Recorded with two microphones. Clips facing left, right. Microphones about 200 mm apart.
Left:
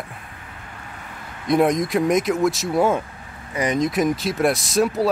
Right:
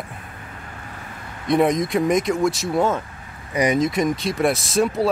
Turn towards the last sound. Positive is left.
turn(degrees=0)  # may be behind; listen again after turning